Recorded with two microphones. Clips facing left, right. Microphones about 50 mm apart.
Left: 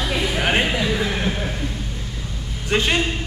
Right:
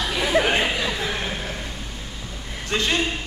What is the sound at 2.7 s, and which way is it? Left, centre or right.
Speech, left.